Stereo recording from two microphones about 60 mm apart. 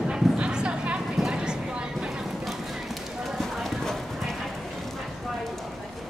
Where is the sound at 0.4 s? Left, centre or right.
Centre.